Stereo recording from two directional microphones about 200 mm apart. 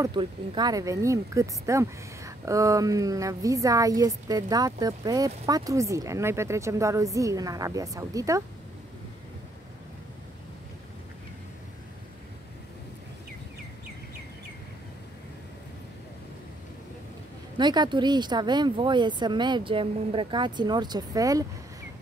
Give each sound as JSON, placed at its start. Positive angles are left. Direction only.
{"t": 0.0, "sound": "speech", "side_deg": -20}
{"t": 17.6, "sound": "speech", "side_deg": -20}